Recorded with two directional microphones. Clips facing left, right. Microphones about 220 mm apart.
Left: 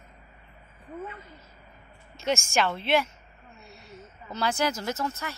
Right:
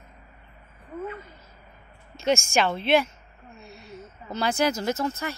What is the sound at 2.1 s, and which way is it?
Speech, 15° right (ahead or behind).